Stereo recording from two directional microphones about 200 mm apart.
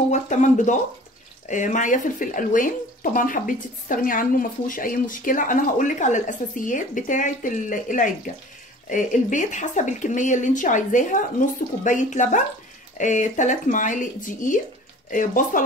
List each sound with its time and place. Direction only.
0.1 s speech: 35° left (ahead or behind)